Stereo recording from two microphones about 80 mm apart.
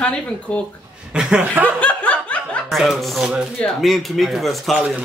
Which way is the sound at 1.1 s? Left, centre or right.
Centre.